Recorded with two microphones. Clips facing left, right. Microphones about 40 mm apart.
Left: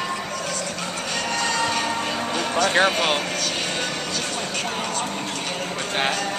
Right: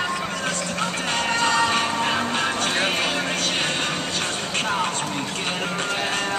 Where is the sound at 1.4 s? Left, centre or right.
Right.